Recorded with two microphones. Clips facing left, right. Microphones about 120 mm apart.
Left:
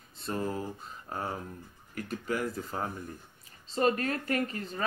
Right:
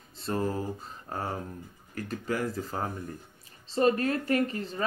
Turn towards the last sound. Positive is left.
turn(degrees=-35)  # may be behind; listen again after turning